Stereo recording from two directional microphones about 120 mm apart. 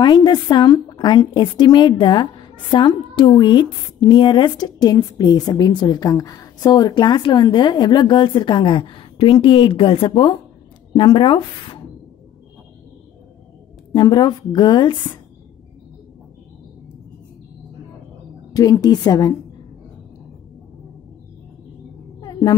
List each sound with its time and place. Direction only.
0.0 s a woman's voice: 35° left (ahead or behind)
13.9 s a woman's voice: 35° left (ahead or behind)
18.5 s a woman's voice: 30° left (ahead or behind)
22.2 s a sound: 35° left (ahead or behind)